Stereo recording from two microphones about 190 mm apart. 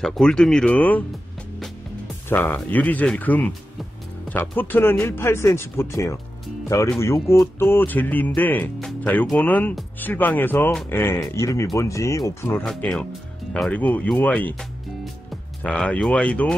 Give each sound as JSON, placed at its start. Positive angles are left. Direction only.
{"t": 0.0, "sound": "speech", "side_deg": 0}
{"t": 2.2, "sound": "speech", "side_deg": 10}
{"t": 12.6, "sound": "speech", "side_deg": 5}
{"t": 15.6, "sound": "speech", "side_deg": 5}